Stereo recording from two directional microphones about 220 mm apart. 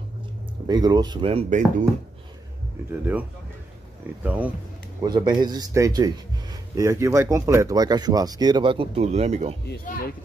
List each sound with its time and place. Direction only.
0.7 s speech: 20° right (ahead or behind)
4.2 s a man's voice: 5° right (ahead or behind)
5.0 s a man's voice: 20° right (ahead or behind)
9.7 s speech: 40° left (ahead or behind)